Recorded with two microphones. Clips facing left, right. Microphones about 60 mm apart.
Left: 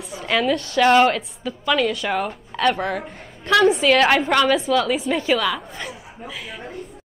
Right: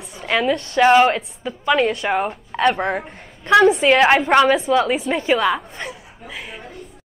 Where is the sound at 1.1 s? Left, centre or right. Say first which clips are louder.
Right 2 dB; right.